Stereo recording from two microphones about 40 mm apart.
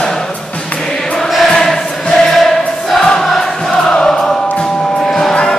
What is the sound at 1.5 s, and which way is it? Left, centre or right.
Choir, centre.